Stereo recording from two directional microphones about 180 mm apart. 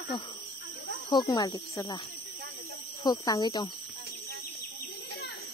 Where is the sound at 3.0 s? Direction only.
20° left (ahead or behind).